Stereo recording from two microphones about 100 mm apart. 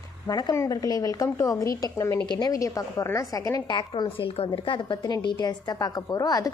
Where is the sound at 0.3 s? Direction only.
40° left (ahead or behind).